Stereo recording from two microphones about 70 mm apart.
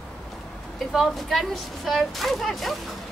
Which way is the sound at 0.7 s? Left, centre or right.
Centre.